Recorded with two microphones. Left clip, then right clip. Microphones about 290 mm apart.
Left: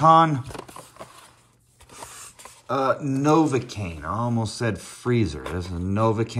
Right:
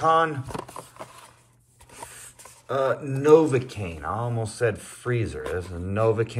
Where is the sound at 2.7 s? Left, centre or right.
Centre.